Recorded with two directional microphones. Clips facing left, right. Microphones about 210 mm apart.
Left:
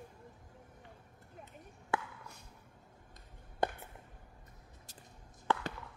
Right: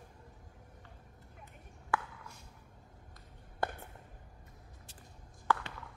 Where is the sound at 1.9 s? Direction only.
20° left (ahead or behind).